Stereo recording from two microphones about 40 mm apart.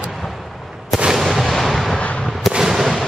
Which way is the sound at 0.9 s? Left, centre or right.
Centre.